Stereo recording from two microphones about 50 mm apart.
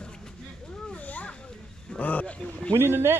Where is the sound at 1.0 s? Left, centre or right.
Left.